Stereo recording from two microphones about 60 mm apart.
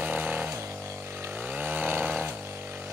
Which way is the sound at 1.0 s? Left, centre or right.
Right.